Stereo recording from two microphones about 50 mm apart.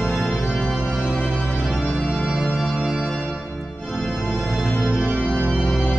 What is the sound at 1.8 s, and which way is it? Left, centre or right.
Music, left.